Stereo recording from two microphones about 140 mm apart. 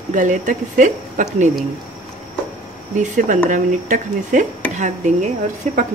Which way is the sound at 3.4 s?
65° right (ahead or behind).